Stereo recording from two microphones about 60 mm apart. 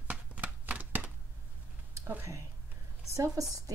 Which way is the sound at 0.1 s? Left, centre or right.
Right.